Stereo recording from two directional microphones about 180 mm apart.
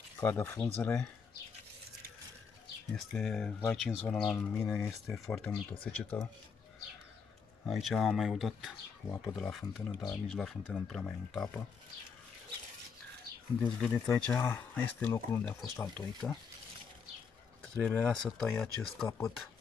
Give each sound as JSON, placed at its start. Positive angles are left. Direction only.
{"t": 0.2, "sound": "speech", "side_deg": 10}
{"t": 3.2, "sound": "speech", "side_deg": 5}
{"t": 7.6, "sound": "speech", "side_deg": 0}
{"t": 9.8, "sound": "speech", "side_deg": 15}
{"t": 13.6, "sound": "speech", "side_deg": 5}
{"t": 17.8, "sound": "speech", "side_deg": 5}